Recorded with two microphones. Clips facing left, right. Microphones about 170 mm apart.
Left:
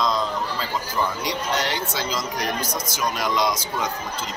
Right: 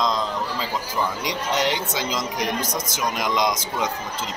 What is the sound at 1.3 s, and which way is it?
A man's voice, 15° right (ahead or behind).